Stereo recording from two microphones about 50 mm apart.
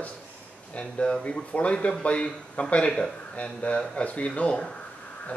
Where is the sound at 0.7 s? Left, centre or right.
Left.